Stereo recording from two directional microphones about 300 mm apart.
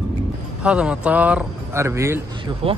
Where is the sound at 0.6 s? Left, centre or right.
Centre.